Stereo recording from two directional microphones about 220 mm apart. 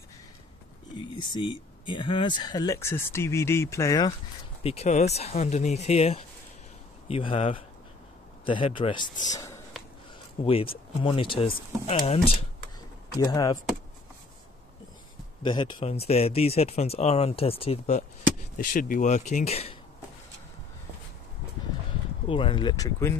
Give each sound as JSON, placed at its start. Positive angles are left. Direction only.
{"t": 0.9, "sound": "speech", "side_deg": 20}
{"t": 4.6, "sound": "speech", "side_deg": 30}
{"t": 15.4, "sound": "speech", "side_deg": 20}
{"t": 22.3, "sound": "speech", "side_deg": 25}